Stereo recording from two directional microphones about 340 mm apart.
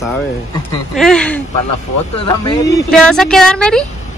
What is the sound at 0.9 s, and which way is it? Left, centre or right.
Speech, centre.